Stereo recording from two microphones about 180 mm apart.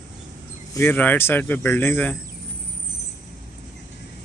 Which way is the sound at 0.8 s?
10° left (ahead or behind).